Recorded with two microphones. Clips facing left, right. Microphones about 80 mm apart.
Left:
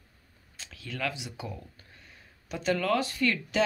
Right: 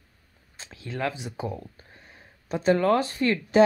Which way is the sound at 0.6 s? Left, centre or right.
Right.